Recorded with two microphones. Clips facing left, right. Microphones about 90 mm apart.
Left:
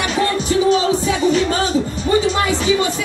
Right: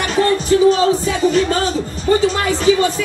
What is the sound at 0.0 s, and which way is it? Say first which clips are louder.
Music: right 3 dB; 40° right (ahead or behind).